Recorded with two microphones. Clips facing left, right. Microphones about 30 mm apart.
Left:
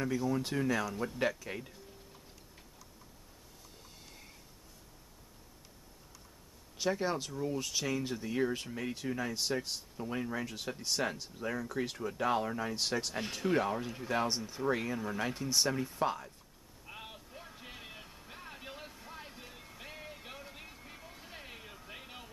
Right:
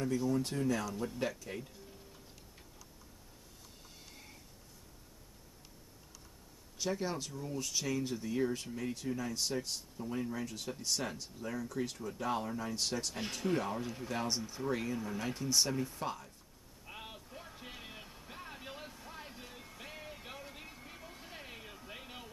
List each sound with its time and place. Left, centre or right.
0.1 s speech: centre
6.8 s speech: centre
9.9 s speech: left
16.8 s music: centre